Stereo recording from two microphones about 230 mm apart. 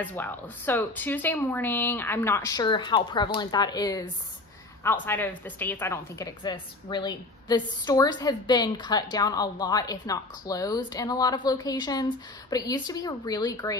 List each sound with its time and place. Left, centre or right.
0.0 s a woman's voice: centre